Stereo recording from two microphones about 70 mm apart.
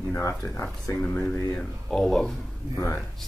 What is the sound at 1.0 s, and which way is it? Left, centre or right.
Speech, left.